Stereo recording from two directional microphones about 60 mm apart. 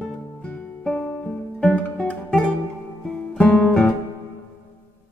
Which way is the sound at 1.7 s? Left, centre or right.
Left.